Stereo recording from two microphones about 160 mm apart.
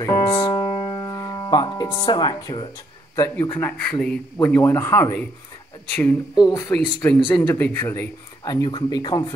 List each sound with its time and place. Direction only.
0.0 s speech: 20° left (ahead or behind)
3.5 s speech: 10° left (ahead or behind)
6.4 s speech: 25° left (ahead or behind)
6.7 s speech: 10° left (ahead or behind); by 9.3 s 25° left (ahead or behind)